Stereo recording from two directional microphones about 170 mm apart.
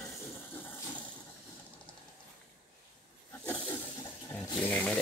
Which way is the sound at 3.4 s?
15° left (ahead or behind).